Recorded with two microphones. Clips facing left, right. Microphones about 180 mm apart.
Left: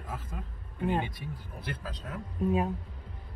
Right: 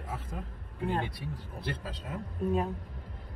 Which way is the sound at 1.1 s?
30° right (ahead or behind).